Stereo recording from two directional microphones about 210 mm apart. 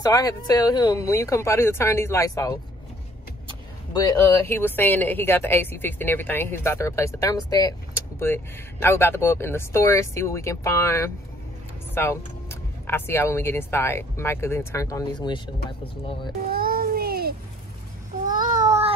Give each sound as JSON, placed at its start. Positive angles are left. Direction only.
{"t": 0.0, "sound": "speech", "side_deg": 15}
{"t": 4.5, "sound": "speech", "side_deg": 10}
{"t": 16.4, "sound": "a sound", "side_deg": -45}
{"t": 18.7, "sound": "child singing", "side_deg": -30}